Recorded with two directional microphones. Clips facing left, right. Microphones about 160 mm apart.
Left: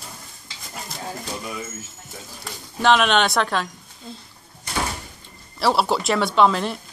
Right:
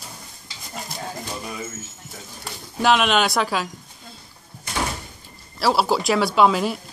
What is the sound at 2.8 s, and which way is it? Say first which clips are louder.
Speech: left 1 dB; 5° right (ahead or behind).